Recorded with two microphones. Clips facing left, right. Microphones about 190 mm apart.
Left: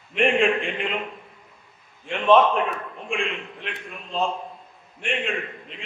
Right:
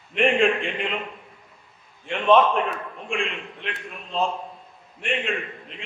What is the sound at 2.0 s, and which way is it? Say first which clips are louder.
A man's voice: left 1 dB; centre (ahead or behind).